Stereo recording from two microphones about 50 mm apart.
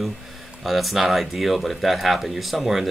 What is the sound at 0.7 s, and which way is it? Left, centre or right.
Speech, centre.